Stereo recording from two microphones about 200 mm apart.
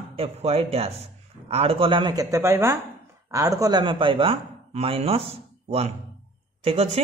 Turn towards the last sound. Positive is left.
turn(degrees=-30)  # may be behind; listen again after turning